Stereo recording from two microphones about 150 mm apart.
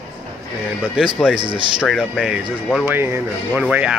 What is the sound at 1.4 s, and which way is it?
Speech, 30° right (ahead or behind).